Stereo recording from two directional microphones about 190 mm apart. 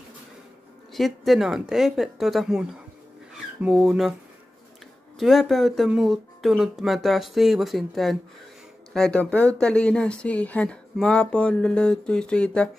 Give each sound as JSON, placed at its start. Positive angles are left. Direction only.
{"t": 0.9, "sound": "speech", "side_deg": 0}
{"t": 5.2, "sound": "speech", "side_deg": 0}